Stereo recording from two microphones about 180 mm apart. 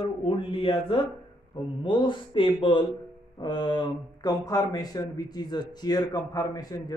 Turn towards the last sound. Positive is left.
turn(degrees=20)  # may be behind; listen again after turning